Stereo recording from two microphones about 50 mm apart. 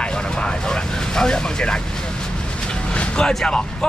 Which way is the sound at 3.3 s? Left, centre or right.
Centre.